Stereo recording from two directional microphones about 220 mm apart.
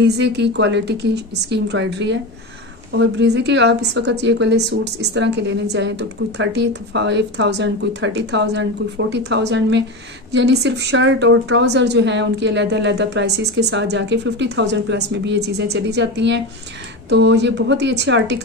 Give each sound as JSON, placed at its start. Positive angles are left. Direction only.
{"t": 0.0, "sound": "a woman's voice", "side_deg": -50}